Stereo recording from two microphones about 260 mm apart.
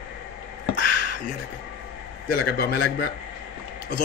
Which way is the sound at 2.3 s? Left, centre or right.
Left.